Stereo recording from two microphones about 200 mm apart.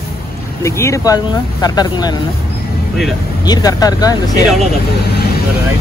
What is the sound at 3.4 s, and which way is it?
Speech, 20° left (ahead or behind).